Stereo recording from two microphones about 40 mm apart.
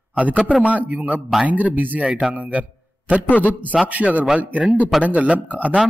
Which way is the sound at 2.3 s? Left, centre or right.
Right.